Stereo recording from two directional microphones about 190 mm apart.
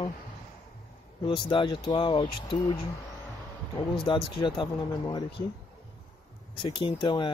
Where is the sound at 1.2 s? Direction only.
25° left (ahead or behind).